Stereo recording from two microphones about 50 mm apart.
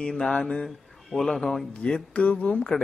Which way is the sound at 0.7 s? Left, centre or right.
Centre.